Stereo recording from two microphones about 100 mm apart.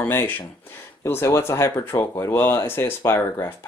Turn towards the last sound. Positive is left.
turn(degrees=25)  # may be behind; listen again after turning